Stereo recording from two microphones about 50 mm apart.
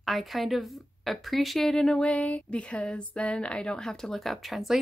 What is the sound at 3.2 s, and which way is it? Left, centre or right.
A woman's voice, left.